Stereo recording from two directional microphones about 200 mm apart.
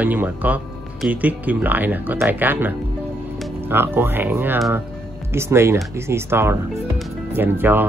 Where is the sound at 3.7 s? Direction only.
10° right (ahead or behind).